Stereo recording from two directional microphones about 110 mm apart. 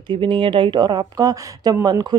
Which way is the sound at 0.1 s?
45° right (ahead or behind).